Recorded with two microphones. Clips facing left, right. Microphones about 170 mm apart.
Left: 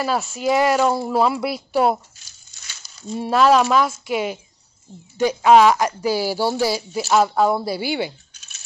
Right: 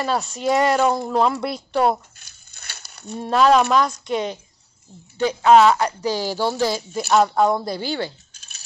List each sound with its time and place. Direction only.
0.0 s speech: centre (ahead or behind)
2.1 s a sound: 60° right (ahead or behind)
3.2 s speech: 5° left (ahead or behind)